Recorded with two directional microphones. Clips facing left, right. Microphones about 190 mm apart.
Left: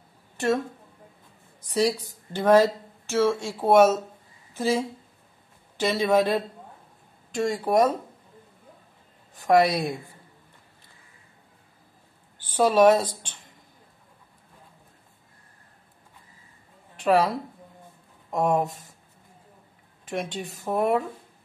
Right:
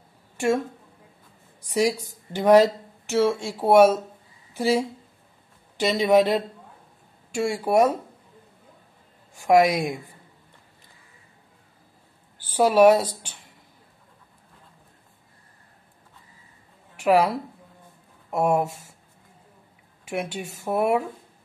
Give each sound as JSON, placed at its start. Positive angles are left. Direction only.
{"t": 1.7, "sound": "a woman's voice", "side_deg": -10}
{"t": 9.3, "sound": "a woman's voice", "side_deg": -10}
{"t": 12.4, "sound": "a woman's voice", "side_deg": -10}
{"t": 17.0, "sound": "a woman's voice", "side_deg": -10}
{"t": 18.3, "sound": "a woman's voice", "side_deg": -10}
{"t": 20.1, "sound": "a woman's voice", "side_deg": -10}